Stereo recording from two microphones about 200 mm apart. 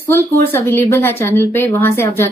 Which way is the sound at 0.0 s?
10° left (ahead or behind).